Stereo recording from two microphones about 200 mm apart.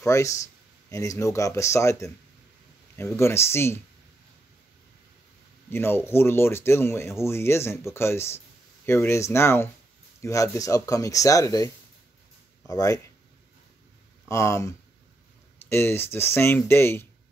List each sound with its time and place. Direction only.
0.0 s speech: 15° left (ahead or behind)
5.7 s speech: 10° left (ahead or behind)
14.3 s speech: 15° left (ahead or behind)